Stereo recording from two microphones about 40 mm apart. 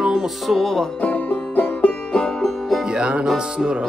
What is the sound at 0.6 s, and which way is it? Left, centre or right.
Music, centre.